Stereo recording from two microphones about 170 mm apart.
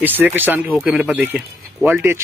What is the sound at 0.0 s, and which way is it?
Speech, 10° right (ahead or behind).